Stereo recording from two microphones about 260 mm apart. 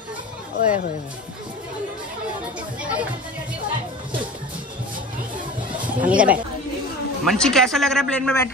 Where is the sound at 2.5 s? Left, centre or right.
Centre.